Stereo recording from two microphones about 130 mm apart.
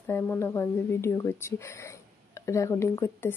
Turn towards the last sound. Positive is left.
turn(degrees=20)  # may be behind; listen again after turning